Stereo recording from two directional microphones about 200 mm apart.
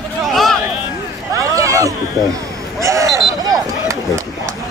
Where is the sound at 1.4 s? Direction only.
15° right (ahead or behind).